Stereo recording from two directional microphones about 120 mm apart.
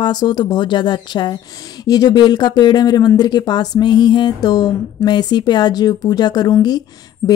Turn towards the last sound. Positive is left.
turn(degrees=25)  # may be behind; listen again after turning